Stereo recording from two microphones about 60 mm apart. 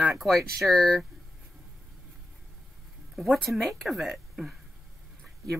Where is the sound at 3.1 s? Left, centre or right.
Centre.